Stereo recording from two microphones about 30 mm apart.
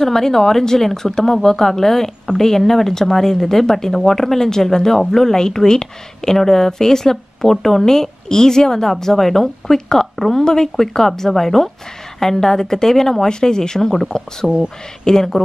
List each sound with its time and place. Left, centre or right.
0.0 s speech: centre
10.4 s speech: centre